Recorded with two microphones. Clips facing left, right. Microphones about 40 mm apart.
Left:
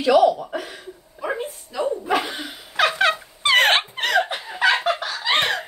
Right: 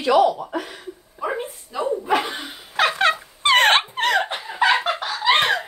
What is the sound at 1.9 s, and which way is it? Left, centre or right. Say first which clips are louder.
Dog: right 2 dB; centre.